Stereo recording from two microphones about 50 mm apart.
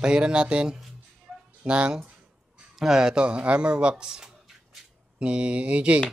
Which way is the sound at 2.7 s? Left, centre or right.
Centre.